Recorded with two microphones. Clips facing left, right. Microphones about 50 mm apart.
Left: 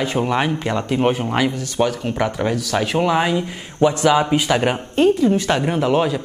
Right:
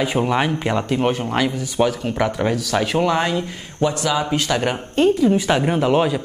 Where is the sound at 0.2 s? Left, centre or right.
Centre.